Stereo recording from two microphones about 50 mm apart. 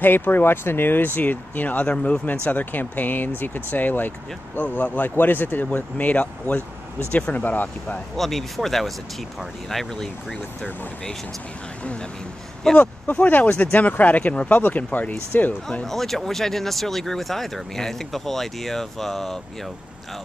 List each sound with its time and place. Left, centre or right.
0.0 s speech: left
8.2 s speech: centre
12.6 s speech: centre
13.0 s speech: left
15.8 s speech: centre